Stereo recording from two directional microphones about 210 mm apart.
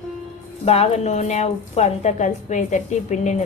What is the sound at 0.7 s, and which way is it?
A woman's voice, 30° left (ahead or behind).